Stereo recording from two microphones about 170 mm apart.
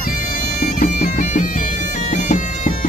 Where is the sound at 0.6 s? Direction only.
60° left (ahead or behind).